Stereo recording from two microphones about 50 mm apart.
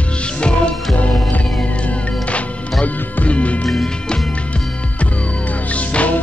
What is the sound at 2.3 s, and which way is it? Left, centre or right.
Music, left.